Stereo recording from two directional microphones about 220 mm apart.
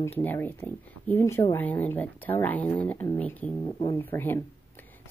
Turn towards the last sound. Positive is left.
turn(degrees=10)  # may be behind; listen again after turning